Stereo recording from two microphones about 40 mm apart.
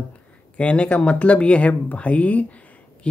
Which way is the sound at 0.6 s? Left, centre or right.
Left.